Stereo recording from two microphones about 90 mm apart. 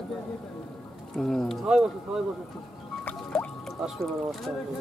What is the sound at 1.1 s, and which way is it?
Speech, 5° left (ahead or behind).